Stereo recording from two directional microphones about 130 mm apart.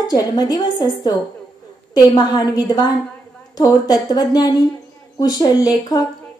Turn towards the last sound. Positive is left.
turn(degrees=30)  # may be behind; listen again after turning